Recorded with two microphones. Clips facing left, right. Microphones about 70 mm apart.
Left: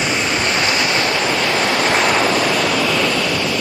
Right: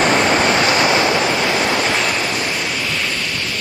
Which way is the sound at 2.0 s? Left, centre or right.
Left.